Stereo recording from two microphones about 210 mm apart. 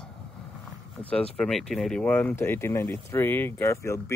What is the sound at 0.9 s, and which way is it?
Speech, 5° left (ahead or behind).